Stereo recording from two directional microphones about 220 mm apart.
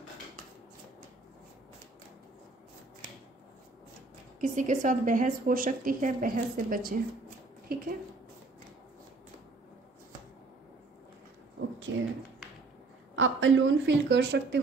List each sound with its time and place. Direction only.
4.4 s a woman's voice: 35° right (ahead or behind)
7.6 s a sound: 40° right (ahead or behind)
11.9 s speech: 60° right (ahead or behind)
13.1 s a woman's voice: 60° right (ahead or behind)